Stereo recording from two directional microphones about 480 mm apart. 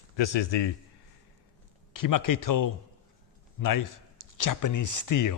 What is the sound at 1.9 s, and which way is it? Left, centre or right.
Speech, left.